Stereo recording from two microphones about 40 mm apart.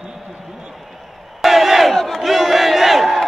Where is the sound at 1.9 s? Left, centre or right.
Centre.